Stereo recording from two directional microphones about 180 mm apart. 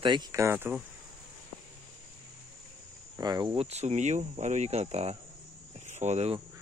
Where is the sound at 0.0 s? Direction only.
25° right (ahead or behind).